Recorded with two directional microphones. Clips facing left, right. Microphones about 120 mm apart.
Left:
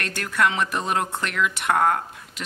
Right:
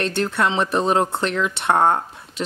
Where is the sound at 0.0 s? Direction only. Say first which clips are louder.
Right 3 dB; 25° right (ahead or behind).